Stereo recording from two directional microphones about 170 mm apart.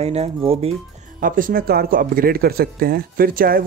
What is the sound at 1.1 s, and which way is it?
Speech, 55° right (ahead or behind).